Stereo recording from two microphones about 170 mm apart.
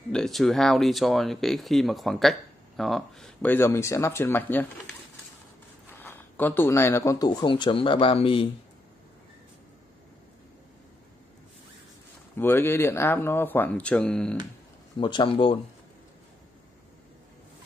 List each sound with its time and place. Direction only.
0.1 s speech: centre (ahead or behind)
5.9 s speech: 10° left (ahead or behind); by 8.5 s 30° left (ahead or behind)
12.4 s speech: 10° left (ahead or behind)
15.0 s speech: 30° left (ahead or behind)